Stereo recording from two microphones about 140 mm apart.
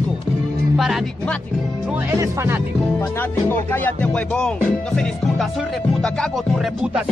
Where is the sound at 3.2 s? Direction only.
15° left (ahead or behind).